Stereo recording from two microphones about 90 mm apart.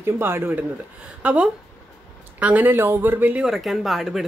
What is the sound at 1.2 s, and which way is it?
Speech, 15° right (ahead or behind).